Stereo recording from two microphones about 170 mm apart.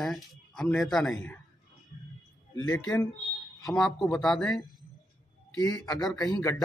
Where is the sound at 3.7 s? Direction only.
Centre (ahead or behind).